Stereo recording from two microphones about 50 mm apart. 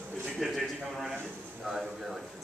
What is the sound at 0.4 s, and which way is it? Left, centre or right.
Speech, centre.